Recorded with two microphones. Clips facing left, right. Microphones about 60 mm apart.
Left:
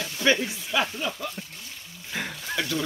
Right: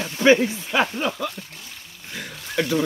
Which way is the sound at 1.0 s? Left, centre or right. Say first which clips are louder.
Right 6 dB; right.